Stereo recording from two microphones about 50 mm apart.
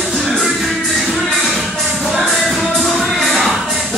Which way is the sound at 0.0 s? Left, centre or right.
Centre.